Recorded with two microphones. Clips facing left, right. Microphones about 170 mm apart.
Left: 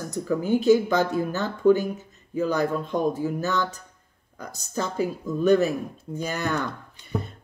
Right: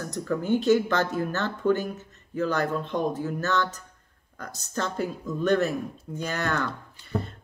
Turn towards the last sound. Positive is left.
turn(degrees=15)  # may be behind; listen again after turning